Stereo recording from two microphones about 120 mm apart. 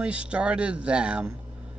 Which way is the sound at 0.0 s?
10° right (ahead or behind).